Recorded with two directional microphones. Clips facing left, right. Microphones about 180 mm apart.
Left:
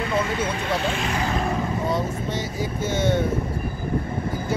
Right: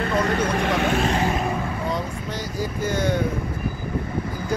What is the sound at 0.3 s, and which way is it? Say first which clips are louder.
Speech: right 3 dB; 65° right (ahead or behind).